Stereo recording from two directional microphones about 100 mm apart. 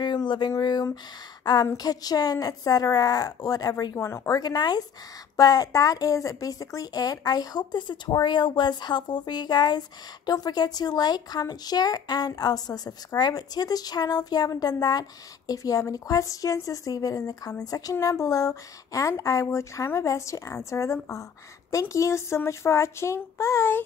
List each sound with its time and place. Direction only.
0.0 s a woman's voice: 45° left (ahead or behind); by 4.4 s 30° left (ahead or behind)
4.4 s a woman's voice: 45° left (ahead or behind); by 23.8 s 25° left (ahead or behind)